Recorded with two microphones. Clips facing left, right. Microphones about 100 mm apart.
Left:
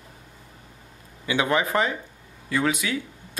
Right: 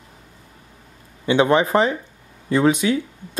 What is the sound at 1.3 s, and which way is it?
Speech, 30° right (ahead or behind).